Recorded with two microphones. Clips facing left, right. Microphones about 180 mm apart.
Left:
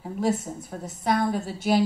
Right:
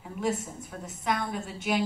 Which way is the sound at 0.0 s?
35° left (ahead or behind).